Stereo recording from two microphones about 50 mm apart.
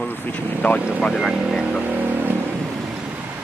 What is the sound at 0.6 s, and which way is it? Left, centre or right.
Speech, left.